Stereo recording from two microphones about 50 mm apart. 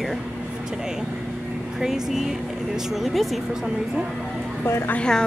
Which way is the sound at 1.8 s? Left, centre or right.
Centre.